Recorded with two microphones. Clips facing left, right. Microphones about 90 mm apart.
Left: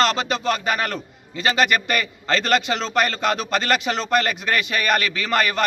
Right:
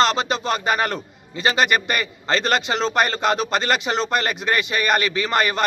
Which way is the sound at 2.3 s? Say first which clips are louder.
Even; 25° right (ahead or behind).